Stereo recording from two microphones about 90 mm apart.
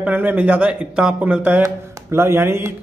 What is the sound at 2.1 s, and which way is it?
Speech, 30° right (ahead or behind).